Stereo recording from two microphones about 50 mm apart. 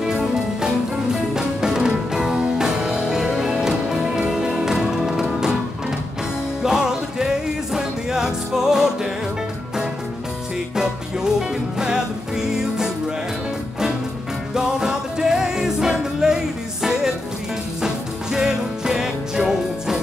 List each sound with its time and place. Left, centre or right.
0.0 s music: centre
6.6 s music: centre
10.8 s music: centre
14.5 s music: centre